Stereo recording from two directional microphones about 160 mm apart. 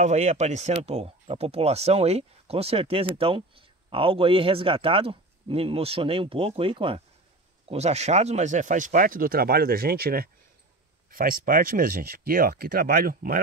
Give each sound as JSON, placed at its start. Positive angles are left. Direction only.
{"t": 0.0, "sound": "speech", "side_deg": -45}